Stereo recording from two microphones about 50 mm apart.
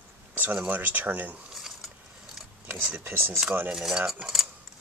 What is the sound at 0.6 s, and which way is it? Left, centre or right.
Speech, right.